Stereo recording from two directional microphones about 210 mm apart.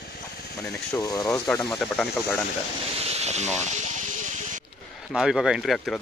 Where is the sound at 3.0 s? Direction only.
30° right (ahead or behind).